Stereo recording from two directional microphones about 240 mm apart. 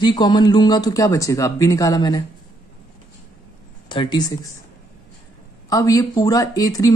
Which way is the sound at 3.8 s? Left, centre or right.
Centre.